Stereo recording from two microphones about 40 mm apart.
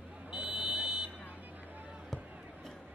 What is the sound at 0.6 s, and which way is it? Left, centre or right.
Vehicle, centre.